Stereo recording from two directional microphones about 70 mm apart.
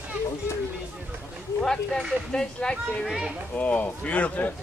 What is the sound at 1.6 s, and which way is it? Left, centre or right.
Speech, centre.